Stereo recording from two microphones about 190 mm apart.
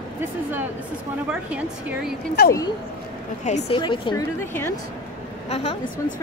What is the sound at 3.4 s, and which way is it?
Speech, 40° left (ahead or behind).